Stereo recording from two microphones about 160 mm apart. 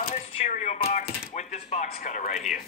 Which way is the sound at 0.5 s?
45° left (ahead or behind).